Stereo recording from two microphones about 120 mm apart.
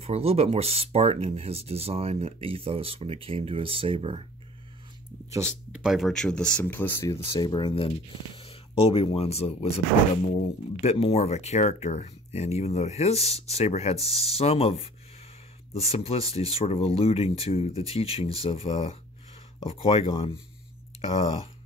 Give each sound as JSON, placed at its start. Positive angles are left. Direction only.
{"t": 0.0, "sound": "speech", "side_deg": -60}
{"t": 5.7, "sound": "speech", "side_deg": -5}
{"t": 7.1, "sound": "speech", "side_deg": 35}
{"t": 10.8, "sound": "speech", "side_deg": 60}